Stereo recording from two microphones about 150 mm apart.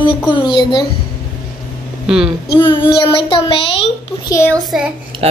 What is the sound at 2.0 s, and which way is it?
Speech, 5° right (ahead or behind).